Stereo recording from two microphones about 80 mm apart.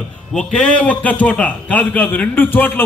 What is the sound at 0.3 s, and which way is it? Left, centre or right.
A man's voice, centre.